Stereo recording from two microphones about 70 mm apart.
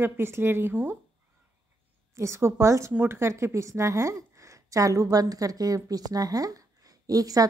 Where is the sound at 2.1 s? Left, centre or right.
Right.